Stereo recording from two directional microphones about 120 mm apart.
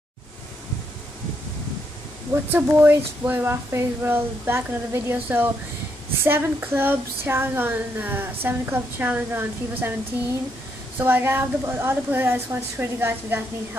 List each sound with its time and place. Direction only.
2.3 s child singing: 15° right (ahead or behind)
11.0 s child singing: 15° right (ahead or behind)